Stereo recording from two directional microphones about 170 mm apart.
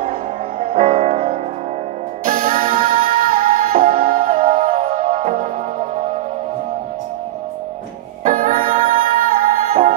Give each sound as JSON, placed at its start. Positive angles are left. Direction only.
{"t": 0.6, "sound": "music", "side_deg": -50}
{"t": 2.2, "sound": "music", "side_deg": -55}
{"t": 8.2, "sound": "music", "side_deg": -50}